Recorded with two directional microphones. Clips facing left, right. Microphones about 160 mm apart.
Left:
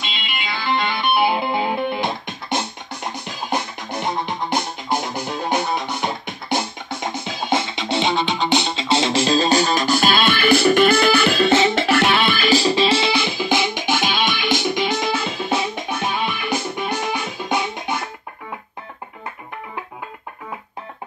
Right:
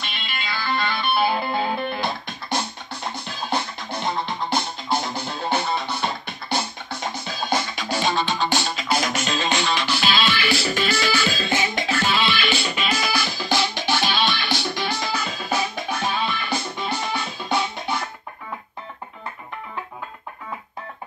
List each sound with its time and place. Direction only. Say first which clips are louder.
0.0 s music: left 3 dB; 20° left (ahead or behind)